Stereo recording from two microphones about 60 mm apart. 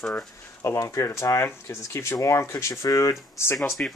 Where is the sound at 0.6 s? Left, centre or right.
Left.